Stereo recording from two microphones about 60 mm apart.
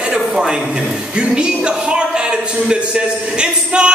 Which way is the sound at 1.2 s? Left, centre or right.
Centre.